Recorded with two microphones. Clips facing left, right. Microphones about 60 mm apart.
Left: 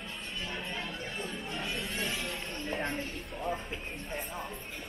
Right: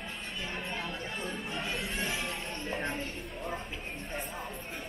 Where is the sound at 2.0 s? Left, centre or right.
Centre.